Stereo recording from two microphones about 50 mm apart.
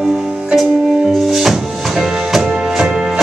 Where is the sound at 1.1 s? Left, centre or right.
Centre.